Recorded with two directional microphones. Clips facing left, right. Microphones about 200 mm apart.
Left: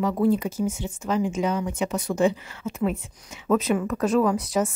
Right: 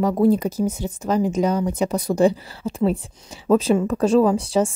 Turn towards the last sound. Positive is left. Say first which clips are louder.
# right 4 dB
turn(degrees=-30)  # may be behind; listen again after turning